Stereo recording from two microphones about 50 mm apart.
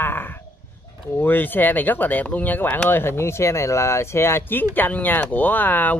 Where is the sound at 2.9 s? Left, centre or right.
Left.